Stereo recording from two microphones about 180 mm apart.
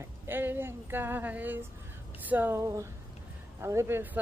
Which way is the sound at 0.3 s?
10° right (ahead or behind).